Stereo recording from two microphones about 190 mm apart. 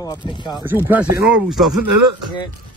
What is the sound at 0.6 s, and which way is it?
Speech, 10° right (ahead or behind).